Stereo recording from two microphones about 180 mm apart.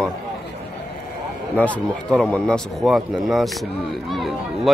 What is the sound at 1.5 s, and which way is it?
Speech, 5° left (ahead or behind).